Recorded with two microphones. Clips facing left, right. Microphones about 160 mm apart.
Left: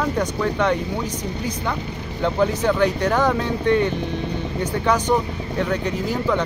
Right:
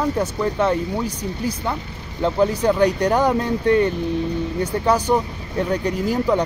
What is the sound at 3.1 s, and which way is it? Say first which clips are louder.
Speech: right 1 dB; 10° right (ahead or behind).